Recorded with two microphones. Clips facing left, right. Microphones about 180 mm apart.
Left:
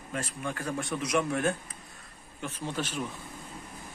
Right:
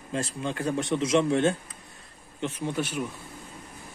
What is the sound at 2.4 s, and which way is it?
Speech, 15° right (ahead or behind).